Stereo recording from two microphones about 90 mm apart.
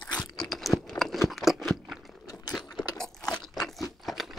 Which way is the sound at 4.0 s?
Centre (ahead or behind).